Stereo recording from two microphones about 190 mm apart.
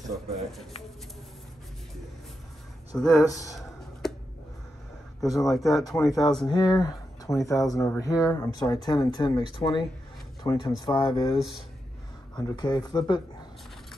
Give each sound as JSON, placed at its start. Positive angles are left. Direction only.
{"t": 0.1, "sound": "speech", "side_deg": 0}
{"t": 3.0, "sound": "speech", "side_deg": 0}
{"t": 3.3, "sound": "speech", "side_deg": 15}
{"t": 4.0, "sound": "a sound", "side_deg": 0}
{"t": 5.3, "sound": "speech", "side_deg": 0}
{"t": 6.4, "sound": "speech", "side_deg": 20}
{"t": 12.4, "sound": "speech", "side_deg": 20}